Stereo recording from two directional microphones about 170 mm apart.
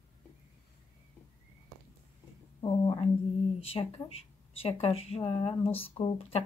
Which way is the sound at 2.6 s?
25° left (ahead or behind).